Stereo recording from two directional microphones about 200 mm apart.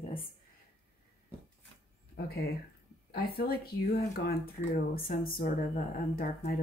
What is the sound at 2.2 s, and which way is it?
Speech, 50° left (ahead or behind).